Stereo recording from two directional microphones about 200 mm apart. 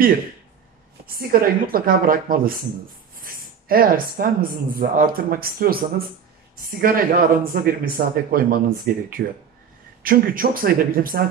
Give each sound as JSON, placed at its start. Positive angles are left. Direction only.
{"t": 1.0, "sound": "speech", "side_deg": -45}